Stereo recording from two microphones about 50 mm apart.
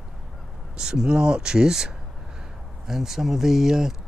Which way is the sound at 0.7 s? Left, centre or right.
Centre.